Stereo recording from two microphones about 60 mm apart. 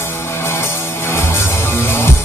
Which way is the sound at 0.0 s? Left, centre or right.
Left.